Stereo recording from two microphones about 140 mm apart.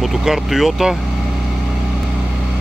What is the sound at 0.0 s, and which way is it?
Speech, centre (ahead or behind).